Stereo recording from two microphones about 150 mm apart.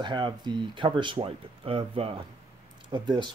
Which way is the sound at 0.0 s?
30° right (ahead or behind).